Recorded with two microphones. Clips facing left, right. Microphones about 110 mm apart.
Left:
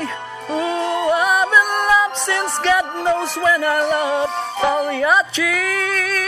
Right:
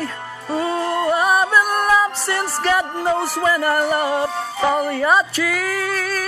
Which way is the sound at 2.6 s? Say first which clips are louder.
Left 2 dB; 5° right (ahead or behind).